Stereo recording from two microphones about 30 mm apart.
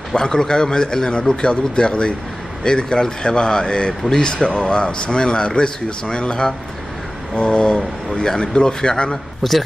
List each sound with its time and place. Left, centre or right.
0.1 s speech: left
9.4 s a man's voice: centre